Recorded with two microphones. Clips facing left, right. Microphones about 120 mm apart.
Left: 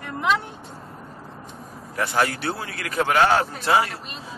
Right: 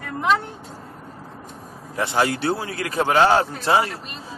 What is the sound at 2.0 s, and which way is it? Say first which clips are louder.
A man's voice: right 2 dB; 25° right (ahead or behind).